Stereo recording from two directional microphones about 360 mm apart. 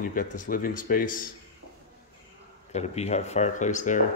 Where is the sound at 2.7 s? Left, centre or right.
Centre.